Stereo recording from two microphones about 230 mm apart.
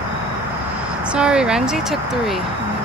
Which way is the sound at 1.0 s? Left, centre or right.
Centre.